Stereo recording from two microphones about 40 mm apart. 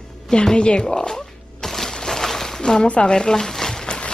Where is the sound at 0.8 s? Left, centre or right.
Centre.